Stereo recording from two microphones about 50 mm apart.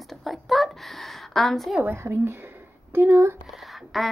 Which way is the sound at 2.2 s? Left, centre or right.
Right.